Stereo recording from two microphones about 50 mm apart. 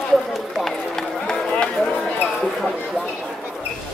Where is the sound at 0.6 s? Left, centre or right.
Centre.